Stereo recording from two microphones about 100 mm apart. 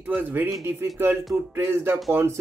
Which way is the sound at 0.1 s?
20° right (ahead or behind).